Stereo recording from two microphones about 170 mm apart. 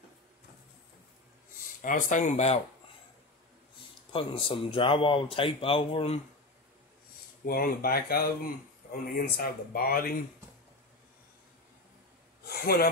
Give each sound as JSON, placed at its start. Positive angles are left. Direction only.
{"t": 1.8, "sound": "speech", "side_deg": 50}
{"t": 4.1, "sound": "speech", "side_deg": 30}
{"t": 7.4, "sound": "speech", "side_deg": 60}
{"t": 12.4, "sound": "a sound", "side_deg": 65}